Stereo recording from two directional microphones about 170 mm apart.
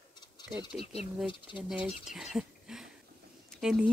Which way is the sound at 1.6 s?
5° right (ahead or behind).